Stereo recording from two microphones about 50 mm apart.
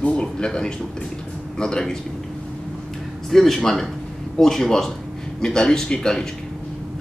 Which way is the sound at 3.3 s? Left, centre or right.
Centre.